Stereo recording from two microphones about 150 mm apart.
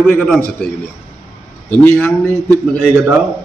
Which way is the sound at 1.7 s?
10° left (ahead or behind).